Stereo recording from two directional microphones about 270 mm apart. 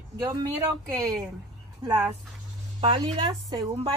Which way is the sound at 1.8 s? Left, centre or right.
Centre.